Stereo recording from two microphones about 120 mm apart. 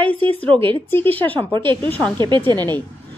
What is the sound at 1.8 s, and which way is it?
Speech, 15° left (ahead or behind).